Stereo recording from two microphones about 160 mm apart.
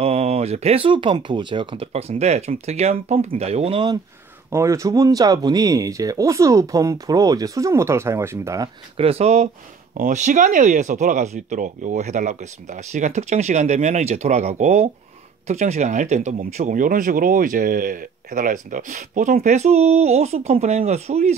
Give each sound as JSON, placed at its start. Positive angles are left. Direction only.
{"t": 0.0, "sound": "speech", "side_deg": -40}
{"t": 4.5, "sound": "speech", "side_deg": -20}
{"t": 8.9, "sound": "speech", "side_deg": -40}